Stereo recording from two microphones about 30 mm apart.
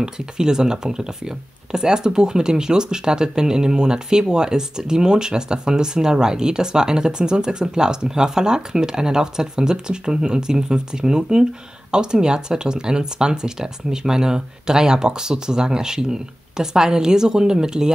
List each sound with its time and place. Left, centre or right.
0.0 s speech: right